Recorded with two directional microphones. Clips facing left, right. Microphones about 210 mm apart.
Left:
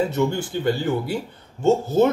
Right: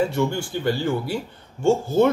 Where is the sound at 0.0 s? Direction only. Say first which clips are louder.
Left 1 dB; 20° left (ahead or behind).